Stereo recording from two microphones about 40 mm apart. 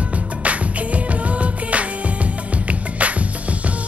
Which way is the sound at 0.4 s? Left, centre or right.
Right.